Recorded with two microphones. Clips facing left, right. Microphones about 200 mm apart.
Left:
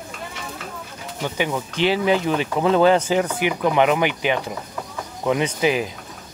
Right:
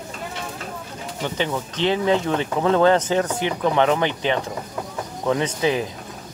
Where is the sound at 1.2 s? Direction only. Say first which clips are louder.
Left 1 dB; 10° left (ahead or behind).